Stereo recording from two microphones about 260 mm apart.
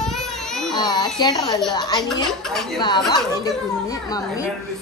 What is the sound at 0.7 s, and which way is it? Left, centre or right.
A man's voice, centre.